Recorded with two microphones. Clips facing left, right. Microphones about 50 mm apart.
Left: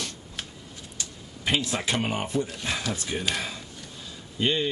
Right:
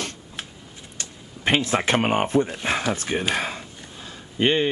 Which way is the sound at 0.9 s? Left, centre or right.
Right.